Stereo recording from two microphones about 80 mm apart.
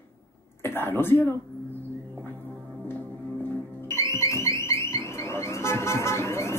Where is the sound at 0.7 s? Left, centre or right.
Left.